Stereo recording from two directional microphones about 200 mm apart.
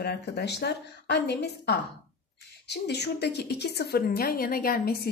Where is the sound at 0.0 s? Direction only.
55° left (ahead or behind).